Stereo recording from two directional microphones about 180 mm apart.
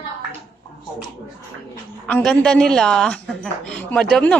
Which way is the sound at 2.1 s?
5° left (ahead or behind).